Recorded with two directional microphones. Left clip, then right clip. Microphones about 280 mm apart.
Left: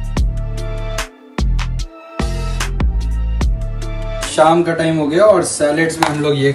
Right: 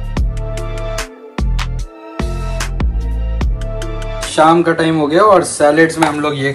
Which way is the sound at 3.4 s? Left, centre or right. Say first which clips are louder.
Right 3 dB; centre.